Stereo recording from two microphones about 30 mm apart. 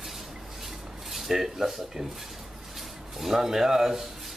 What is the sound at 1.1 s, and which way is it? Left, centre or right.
Speech, centre.